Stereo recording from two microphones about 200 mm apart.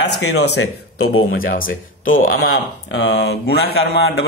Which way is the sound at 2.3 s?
55° left (ahead or behind).